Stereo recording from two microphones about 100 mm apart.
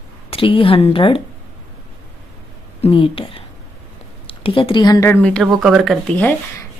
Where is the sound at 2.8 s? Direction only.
65° left (ahead or behind).